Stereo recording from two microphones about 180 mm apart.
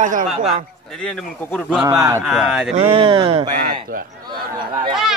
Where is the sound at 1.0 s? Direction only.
5° left (ahead or behind).